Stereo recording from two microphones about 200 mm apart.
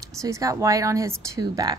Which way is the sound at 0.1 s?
15° right (ahead or behind).